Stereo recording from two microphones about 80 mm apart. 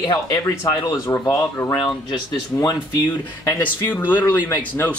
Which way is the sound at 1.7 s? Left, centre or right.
Left.